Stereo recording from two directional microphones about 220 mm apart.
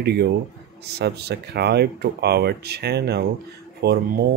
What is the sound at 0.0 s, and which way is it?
Speech, 45° right (ahead or behind).